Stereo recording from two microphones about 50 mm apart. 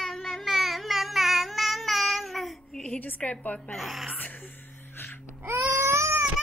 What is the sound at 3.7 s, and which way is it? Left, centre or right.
Speech, centre.